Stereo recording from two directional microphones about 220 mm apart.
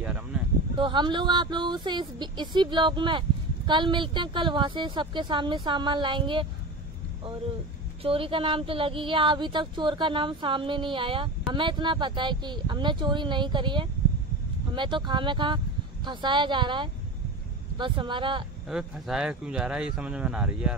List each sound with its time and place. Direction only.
0.0 s speech: 5° right (ahead or behind)
0.7 s speech: 20° right (ahead or behind)
8.0 s speech: 25° right (ahead or behind)
18.7 s speech: 5° right (ahead or behind)